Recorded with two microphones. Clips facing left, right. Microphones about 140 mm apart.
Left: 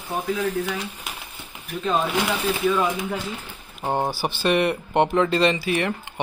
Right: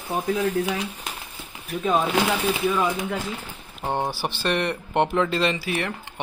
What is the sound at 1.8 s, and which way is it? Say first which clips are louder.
Speech: right 1 dB; 5° right (ahead or behind).